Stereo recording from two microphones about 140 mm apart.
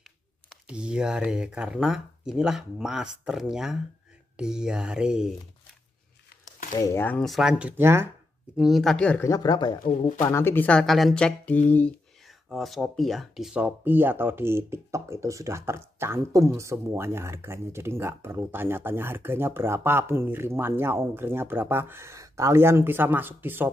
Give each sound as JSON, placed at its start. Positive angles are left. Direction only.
{"t": 0.7, "sound": "speech", "side_deg": -5}
{"t": 6.7, "sound": "speech", "side_deg": 25}
{"t": 7.0, "sound": "speech", "side_deg": 10}
{"t": 7.2, "sound": "speech", "side_deg": 0}
{"t": 8.5, "sound": "speech", "side_deg": 0}
{"t": 9.2, "sound": "speech", "side_deg": 25}
{"t": 9.8, "sound": "speech", "side_deg": 60}
{"t": 10.2, "sound": "speech", "side_deg": 15}